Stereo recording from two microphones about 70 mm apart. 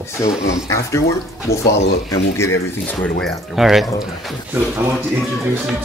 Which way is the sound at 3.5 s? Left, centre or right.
Centre.